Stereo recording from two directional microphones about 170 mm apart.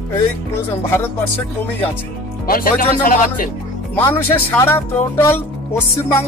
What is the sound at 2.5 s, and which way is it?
Speech, 55° left (ahead or behind).